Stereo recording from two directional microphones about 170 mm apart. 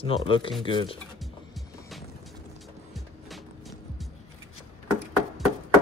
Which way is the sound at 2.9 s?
Centre (ahead or behind).